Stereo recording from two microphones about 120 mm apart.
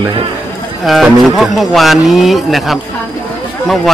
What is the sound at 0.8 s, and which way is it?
Speech, centre (ahead or behind).